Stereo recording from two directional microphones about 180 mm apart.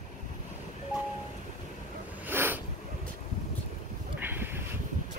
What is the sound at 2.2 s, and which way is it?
Snort, 10° right (ahead or behind).